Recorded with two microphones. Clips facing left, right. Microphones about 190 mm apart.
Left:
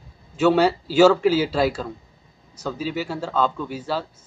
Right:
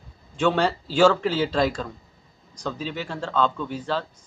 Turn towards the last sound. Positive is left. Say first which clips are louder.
# left 1 dB
turn(degrees=10)  # may be behind; listen again after turning